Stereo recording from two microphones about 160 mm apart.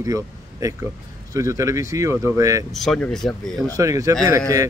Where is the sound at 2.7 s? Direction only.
Centre (ahead or behind).